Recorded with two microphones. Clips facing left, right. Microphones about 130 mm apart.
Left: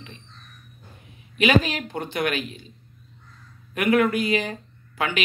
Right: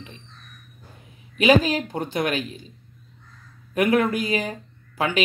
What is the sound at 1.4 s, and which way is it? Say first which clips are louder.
Speech: right 3 dB; 30° right (ahead or behind).